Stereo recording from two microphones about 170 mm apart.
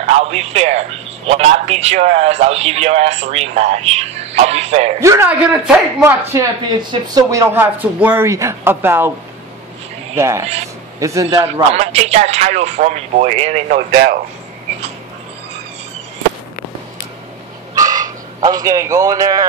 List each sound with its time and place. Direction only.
0.0 s a man's voice: 40° right (ahead or behind)
5.0 s speech: 15° right (ahead or behind)
5.5 s speech: 5° right (ahead or behind)
6.3 s speech: 20° right (ahead or behind)
10.1 s a man's voice: 15° right (ahead or behind)
11.3 s a man's voice: 30° right (ahead or behind)
13.7 s speech: 65° right (ahead or behind)
17.7 s a sound: 20° right (ahead or behind)